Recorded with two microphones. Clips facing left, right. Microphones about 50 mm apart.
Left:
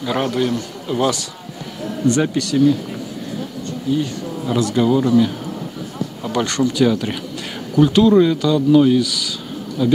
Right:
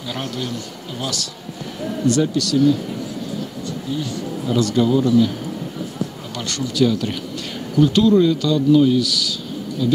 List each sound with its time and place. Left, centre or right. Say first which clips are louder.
0.0 s a man's voice: left 8 dB; left
4.5 s a man's voice: left 1 dB; centre